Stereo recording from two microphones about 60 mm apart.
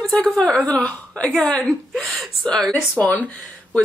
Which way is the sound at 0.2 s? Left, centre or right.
Centre.